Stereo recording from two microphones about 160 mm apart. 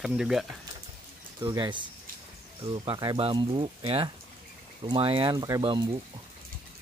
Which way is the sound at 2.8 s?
30° right (ahead or behind).